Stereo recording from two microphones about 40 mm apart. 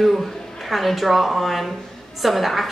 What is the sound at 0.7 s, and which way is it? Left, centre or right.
Speech, centre.